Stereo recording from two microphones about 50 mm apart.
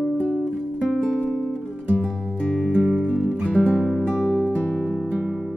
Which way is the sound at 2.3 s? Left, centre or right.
Centre.